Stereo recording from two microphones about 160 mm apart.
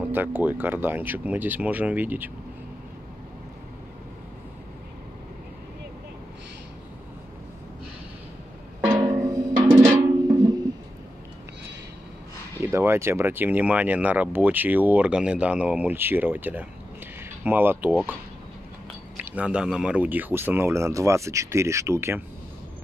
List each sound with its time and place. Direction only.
0.1 s speech: 10° right (ahead or behind)
8.8 s music: 25° right (ahead or behind)
12.6 s speech: 15° right (ahead or behind)
19.2 s speech: 10° right (ahead or behind)